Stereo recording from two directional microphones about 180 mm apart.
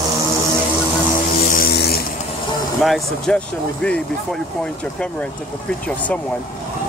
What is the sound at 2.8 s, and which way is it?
Speech, centre (ahead or behind).